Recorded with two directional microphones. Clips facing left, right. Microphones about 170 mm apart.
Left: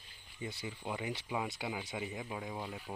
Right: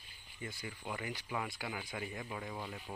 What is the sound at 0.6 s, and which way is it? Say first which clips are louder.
Speech: left 3 dB; 20° left (ahead or behind).